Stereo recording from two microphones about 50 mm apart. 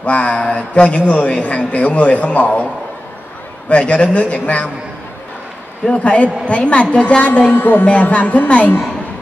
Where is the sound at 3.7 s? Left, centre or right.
Left.